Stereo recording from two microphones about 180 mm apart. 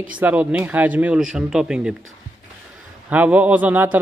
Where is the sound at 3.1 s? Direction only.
10° right (ahead or behind).